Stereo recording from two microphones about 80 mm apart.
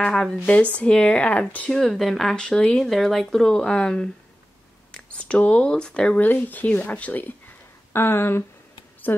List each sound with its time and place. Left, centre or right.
0.0 s speech: centre
1.7 s speech: centre
2.9 s speech: centre; by 8.5 s left